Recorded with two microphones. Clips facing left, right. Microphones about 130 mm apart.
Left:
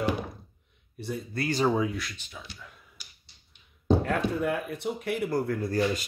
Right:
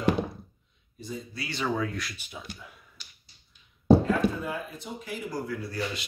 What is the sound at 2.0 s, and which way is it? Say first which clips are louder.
Speech: even; centre (ahead or behind).